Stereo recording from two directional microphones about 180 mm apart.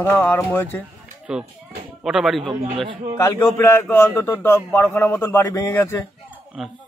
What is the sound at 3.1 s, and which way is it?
A man's voice, 15° left (ahead or behind).